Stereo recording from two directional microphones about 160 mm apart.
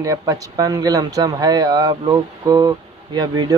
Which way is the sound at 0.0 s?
20° right (ahead or behind).